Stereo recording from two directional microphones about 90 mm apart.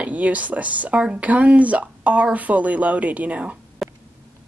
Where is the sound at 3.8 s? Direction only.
Centre (ahead or behind).